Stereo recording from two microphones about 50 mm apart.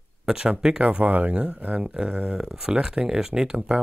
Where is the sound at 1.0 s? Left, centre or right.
Right; by 3.5 s centre.